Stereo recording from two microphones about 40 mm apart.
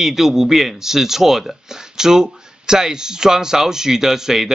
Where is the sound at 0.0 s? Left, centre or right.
Centre.